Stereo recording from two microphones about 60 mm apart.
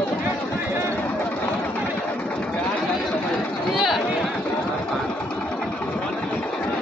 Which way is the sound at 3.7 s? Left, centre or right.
Centre.